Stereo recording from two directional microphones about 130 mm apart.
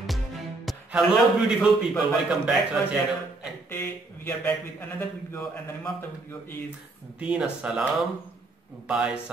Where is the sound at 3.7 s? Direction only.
15° left (ahead or behind).